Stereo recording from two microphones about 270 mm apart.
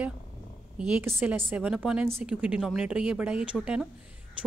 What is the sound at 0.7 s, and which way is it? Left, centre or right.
A woman's voice, centre.